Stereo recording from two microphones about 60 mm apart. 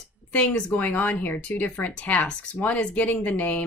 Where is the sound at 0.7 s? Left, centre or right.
Left.